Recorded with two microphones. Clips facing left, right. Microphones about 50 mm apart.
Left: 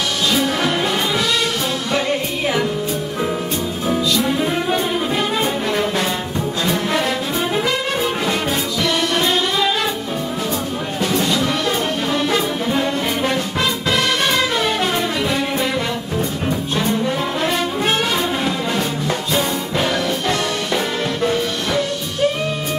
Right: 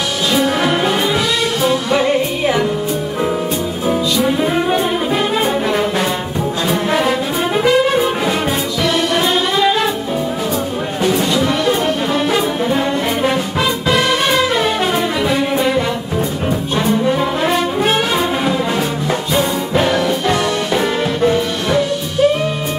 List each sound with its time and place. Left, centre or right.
0.3 s music: centre
3.8 s brass instrument: centre
6.7 s music: centre
11.0 s music: centre
16.4 s brass instrument: centre
19.0 s music: centre